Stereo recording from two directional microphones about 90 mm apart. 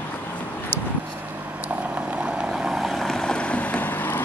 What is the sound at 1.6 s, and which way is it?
Vehicle, 15° right (ahead or behind).